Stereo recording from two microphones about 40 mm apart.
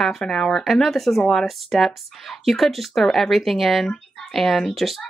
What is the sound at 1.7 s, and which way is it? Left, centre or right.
Speech, centre.